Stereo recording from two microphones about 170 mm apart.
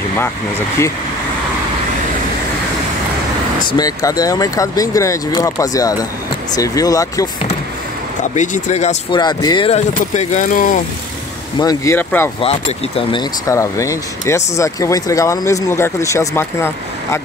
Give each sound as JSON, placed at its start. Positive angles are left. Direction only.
{"t": 0.2, "sound": "speech", "side_deg": 15}
{"t": 3.7, "sound": "speech", "side_deg": 20}
{"t": 8.2, "sound": "speech", "side_deg": 45}
{"t": 9.1, "sound": "speech", "side_deg": 25}
{"t": 9.8, "sound": "speech", "side_deg": 45}
{"t": 11.5, "sound": "speech", "side_deg": 20}
{"t": 12.4, "sound": "speech", "side_deg": 35}
{"t": 13.5, "sound": "speech", "side_deg": 20}